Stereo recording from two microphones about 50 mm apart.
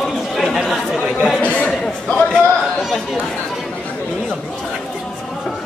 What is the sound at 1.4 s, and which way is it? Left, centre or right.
Chatter, left.